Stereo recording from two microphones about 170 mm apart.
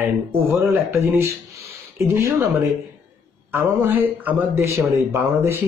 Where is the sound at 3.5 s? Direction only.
15° right (ahead or behind).